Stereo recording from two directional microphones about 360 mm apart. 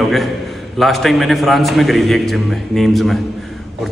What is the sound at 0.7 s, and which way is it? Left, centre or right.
A man's voice, centre.